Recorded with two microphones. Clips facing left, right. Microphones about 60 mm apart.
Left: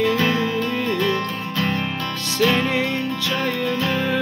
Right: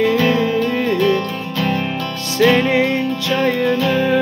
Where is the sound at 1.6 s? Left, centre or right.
Centre.